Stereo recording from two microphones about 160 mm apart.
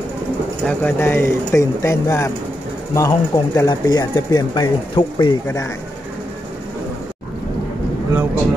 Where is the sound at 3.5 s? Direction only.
25° left (ahead or behind).